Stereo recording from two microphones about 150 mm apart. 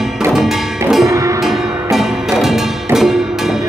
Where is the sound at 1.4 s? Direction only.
Centre (ahead or behind).